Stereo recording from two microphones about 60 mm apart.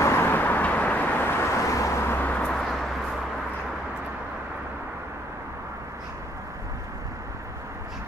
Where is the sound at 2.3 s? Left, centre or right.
Centre.